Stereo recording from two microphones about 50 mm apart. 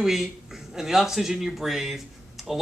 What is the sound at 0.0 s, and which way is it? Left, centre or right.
Speech, centre.